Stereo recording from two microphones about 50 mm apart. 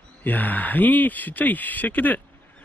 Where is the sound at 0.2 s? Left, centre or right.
Left.